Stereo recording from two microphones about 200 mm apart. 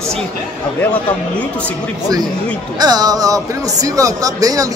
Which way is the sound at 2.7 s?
20° right (ahead or behind).